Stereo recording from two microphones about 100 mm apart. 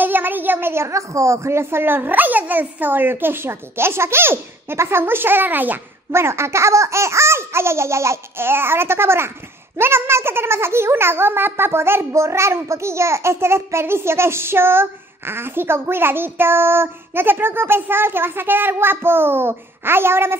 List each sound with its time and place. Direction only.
0.0 s a child's voice: 20° right (ahead or behind)